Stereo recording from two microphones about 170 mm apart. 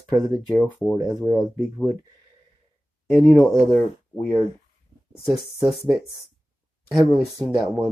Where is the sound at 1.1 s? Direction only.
10° left (ahead or behind).